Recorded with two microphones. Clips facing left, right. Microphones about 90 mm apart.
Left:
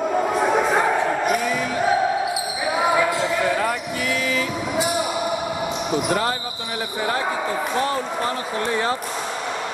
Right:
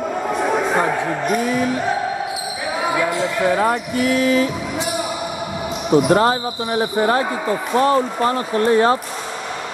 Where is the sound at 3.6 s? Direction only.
35° right (ahead or behind).